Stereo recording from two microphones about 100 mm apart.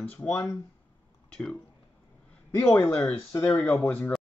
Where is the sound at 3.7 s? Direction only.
20° left (ahead or behind).